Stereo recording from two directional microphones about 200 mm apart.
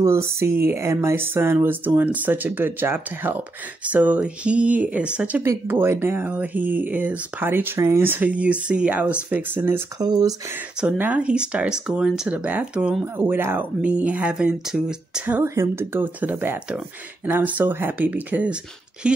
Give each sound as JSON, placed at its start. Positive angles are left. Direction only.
{"t": 0.0, "sound": "speech", "side_deg": -15}
{"t": 10.8, "sound": "speech", "side_deg": -5}